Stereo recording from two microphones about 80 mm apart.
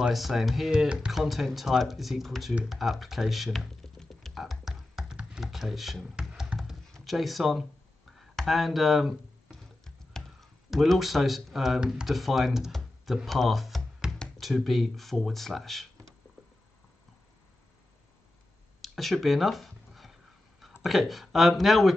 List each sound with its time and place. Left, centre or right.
0.0 s speech: centre
2.7 s computer keyboard: centre
6.9 s speech: centre
8.2 s a sound: centre
11.8 s speech: centre
18.8 s a sound: centre
20.8 s speech: centre